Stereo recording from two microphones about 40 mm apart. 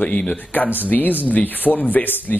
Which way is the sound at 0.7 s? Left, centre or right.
Left.